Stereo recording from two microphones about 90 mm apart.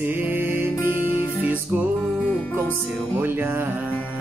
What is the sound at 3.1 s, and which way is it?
Music, 25° right (ahead or behind).